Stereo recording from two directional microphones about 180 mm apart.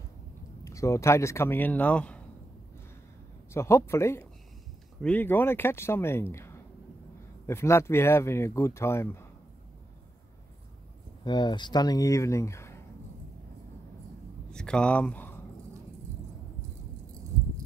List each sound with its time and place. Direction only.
0.7 s speech: 15° left (ahead or behind)
3.5 s speech: 15° left (ahead or behind)
6.3 s a sound: 15° left (ahead or behind)
7.4 s speech: 15° left (ahead or behind)
11.2 s speech: 25° left (ahead or behind)
14.5 s speech: 5° left (ahead or behind)